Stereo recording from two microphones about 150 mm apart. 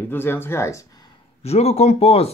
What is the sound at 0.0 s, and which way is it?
Speech, 15° left (ahead or behind).